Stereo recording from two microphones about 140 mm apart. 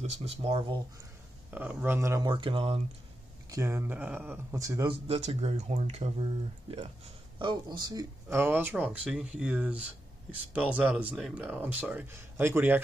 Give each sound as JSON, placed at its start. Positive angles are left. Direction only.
{"t": 0.0, "sound": "speech", "side_deg": -50}
{"t": 1.5, "sound": "speech", "side_deg": -10}
{"t": 2.3, "sound": "speech", "side_deg": -40}
{"t": 3.4, "sound": "speech", "side_deg": -20}
{"t": 4.6, "sound": "speech", "side_deg": -25}
{"t": 4.8, "sound": "speech", "side_deg": -45}
{"t": 7.3, "sound": "speech", "side_deg": -30}